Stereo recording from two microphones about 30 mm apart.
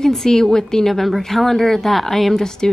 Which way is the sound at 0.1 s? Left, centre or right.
Centre.